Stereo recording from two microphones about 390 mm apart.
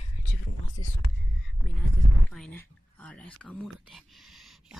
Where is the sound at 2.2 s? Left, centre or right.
Centre.